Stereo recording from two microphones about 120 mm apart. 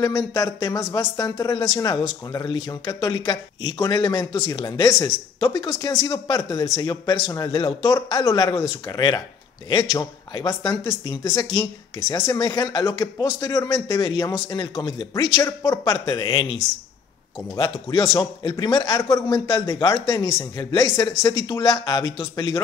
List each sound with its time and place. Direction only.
0.0 s speech: 30° left (ahead or behind)
5.7 s speech: 30° left (ahead or behind)
15.4 s speech: 25° left (ahead or behind)
17.6 s speech: 30° left (ahead or behind)
18.1 s speech: 40° left (ahead or behind)